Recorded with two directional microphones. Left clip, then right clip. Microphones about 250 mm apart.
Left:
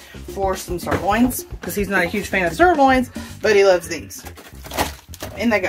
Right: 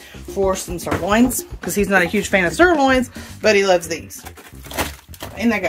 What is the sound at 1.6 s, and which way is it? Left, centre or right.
Speech, right.